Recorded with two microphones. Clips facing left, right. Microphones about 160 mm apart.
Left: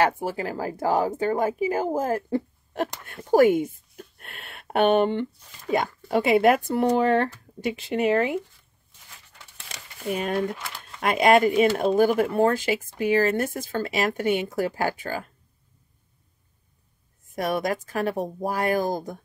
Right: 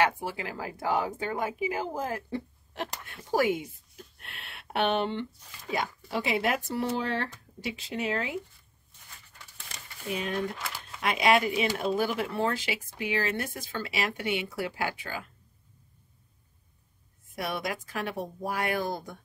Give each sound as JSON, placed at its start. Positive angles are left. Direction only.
{"t": 0.0, "sound": "speech", "side_deg": 40}
{"t": 10.0, "sound": "speech", "side_deg": 50}
{"t": 10.5, "sound": "a sound", "side_deg": 0}
{"t": 11.0, "sound": "speech", "side_deg": 50}
{"t": 17.4, "sound": "speech", "side_deg": 45}